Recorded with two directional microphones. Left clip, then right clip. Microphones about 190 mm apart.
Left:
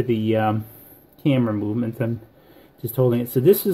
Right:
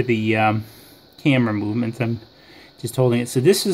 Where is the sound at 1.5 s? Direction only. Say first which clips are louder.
Right 1 dB; 30° right (ahead or behind).